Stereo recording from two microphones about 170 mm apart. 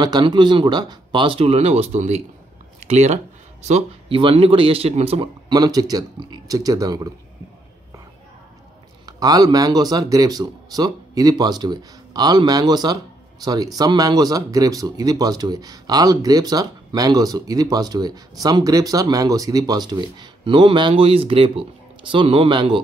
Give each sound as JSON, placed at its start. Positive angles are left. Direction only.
{"t": 0.0, "sound": "a man's voice", "side_deg": -25}
{"t": 5.5, "sound": "speech", "side_deg": -20}
{"t": 9.0, "sound": "a man's voice", "side_deg": -20}